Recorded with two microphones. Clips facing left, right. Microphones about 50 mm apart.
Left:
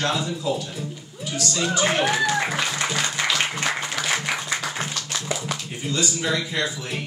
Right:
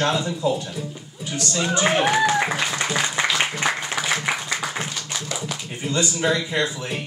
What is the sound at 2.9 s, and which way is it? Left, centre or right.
Applause, centre.